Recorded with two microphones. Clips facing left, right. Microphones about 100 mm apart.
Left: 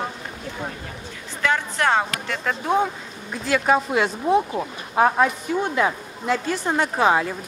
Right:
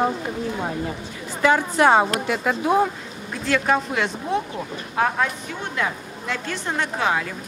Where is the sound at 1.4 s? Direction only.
15° right (ahead or behind).